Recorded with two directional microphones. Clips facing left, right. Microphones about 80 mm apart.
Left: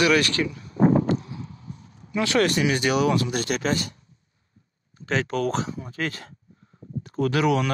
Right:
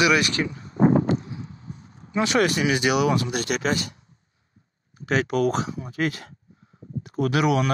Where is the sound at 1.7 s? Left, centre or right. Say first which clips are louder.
Left 2 dB; right.